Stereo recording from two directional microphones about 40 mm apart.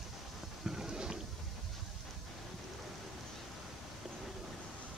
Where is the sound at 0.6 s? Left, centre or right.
Centre.